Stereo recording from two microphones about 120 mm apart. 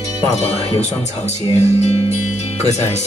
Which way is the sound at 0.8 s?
70° left (ahead or behind).